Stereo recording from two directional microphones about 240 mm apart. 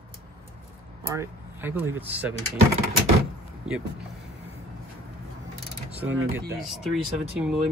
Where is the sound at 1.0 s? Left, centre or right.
Centre.